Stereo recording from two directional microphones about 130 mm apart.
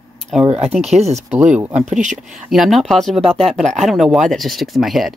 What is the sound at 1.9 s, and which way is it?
Speech, 75° right (ahead or behind).